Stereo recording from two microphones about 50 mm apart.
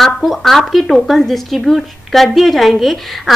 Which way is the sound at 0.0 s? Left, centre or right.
Centre.